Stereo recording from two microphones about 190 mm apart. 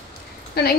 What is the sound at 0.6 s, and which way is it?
Speech, 55° left (ahead or behind).